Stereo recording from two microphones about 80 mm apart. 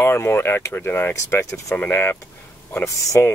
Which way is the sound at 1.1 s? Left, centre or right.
Left.